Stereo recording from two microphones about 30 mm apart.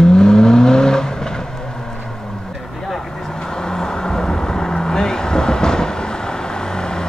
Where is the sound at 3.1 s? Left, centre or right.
Centre.